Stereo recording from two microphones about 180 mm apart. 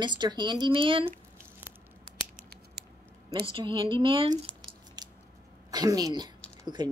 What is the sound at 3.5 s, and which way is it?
Speech, 30° right (ahead or behind).